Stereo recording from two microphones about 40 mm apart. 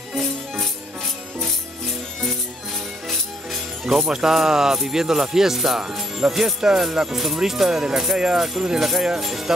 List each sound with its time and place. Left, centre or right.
0.1 s music: centre
4.1 s speech: centre
5.8 s speech: centre
6.1 s speech: centre